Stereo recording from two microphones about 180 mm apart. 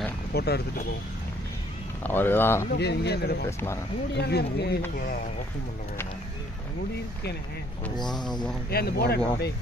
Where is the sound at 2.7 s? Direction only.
65° left (ahead or behind).